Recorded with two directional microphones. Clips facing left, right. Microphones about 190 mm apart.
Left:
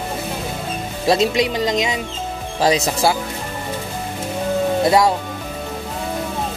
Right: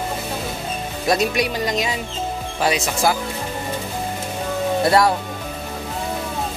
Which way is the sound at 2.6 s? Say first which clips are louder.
Left 3 dB; 30° left (ahead or behind).